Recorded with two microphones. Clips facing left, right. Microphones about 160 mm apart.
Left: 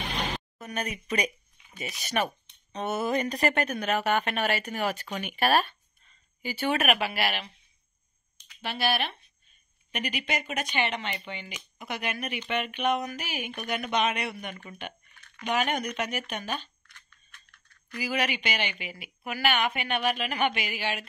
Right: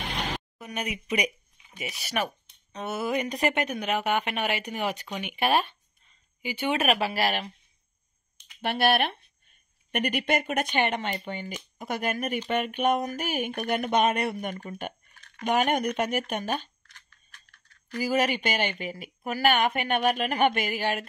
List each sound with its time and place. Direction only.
0.6 s speech: 10° right (ahead or behind); by 7.5 s 40° right (ahead or behind)
8.5 s speech: 55° right (ahead or behind)
17.9 s speech: 45° right (ahead or behind)